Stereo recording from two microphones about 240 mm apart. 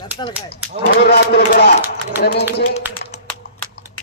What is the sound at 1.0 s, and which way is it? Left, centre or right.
Speech, left.